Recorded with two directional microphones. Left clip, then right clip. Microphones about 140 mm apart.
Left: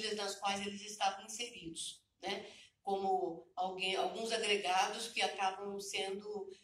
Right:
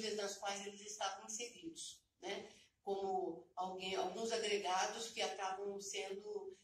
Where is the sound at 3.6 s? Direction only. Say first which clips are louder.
Left 6 dB; 35° right (ahead or behind).